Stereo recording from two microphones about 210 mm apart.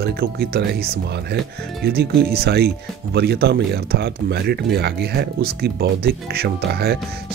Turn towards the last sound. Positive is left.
turn(degrees=-50)  # may be behind; listen again after turning